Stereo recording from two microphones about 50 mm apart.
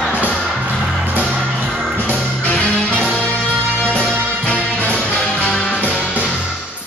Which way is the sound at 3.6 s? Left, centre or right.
Left.